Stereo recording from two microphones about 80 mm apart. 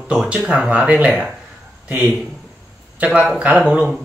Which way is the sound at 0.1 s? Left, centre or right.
Centre.